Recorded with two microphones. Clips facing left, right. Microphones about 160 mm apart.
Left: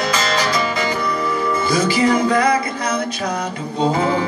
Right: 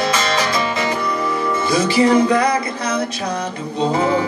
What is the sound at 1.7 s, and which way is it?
Music, 30° right (ahead or behind).